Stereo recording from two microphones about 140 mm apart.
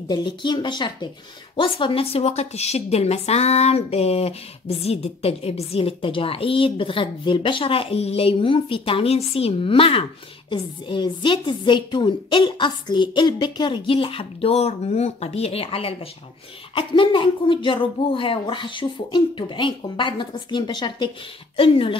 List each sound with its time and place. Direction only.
0.1 s a woman's voice: 35° left (ahead or behind)